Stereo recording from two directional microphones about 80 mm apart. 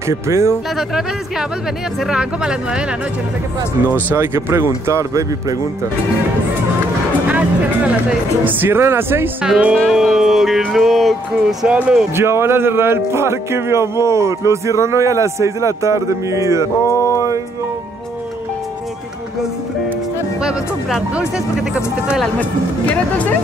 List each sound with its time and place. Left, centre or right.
0.1 s speech: right
2.0 s speech: centre
3.9 s speech: right
7.2 s speech: centre
9.4 s speech: centre
9.8 s speech: centre
11.6 s speech: centre
12.2 s speech: right
16.8 s a sound: left
20.4 s speech: centre
22.4 s speech: centre